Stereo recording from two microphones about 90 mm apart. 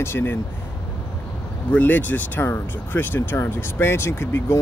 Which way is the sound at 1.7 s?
20° left (ahead or behind).